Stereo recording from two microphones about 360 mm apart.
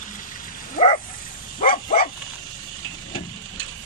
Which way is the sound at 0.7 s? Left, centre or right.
Centre.